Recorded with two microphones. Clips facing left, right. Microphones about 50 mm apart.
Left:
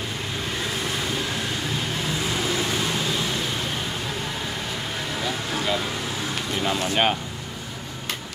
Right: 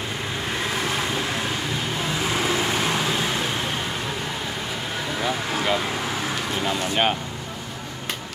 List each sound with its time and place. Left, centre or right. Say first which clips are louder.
2.3 s vehicle: right 3 dB; right
5.2 s vehicle: right 3 dB; right
6.6 s speech: left 1 dB; centre